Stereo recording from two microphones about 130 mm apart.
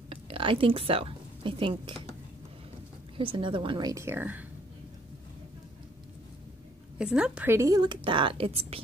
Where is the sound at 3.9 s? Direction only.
20° right (ahead or behind).